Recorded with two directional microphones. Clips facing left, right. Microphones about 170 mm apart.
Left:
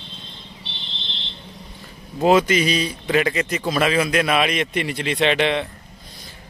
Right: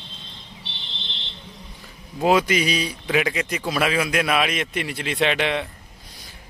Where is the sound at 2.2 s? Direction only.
10° right (ahead or behind).